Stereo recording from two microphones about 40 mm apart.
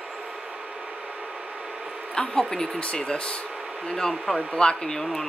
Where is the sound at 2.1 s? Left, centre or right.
Left.